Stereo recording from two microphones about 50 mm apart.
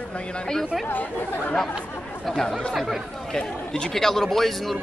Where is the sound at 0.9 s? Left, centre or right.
Left.